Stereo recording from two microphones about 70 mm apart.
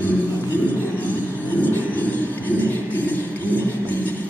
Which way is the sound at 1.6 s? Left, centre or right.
Left.